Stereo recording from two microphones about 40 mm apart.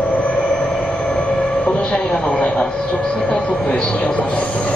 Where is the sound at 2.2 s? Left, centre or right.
Left.